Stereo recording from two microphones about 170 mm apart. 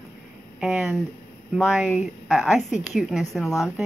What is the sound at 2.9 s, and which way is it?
Speech, 5° right (ahead or behind).